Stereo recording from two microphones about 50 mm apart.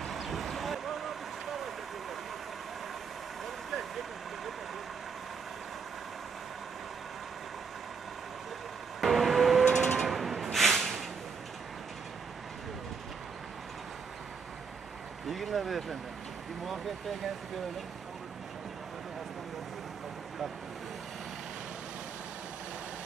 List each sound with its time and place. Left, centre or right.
0.0 s vehicle: centre
9.0 s vehicle: centre
9.7 s vehicle: centre
9.9 s music: centre
15.2 s vehicle: centre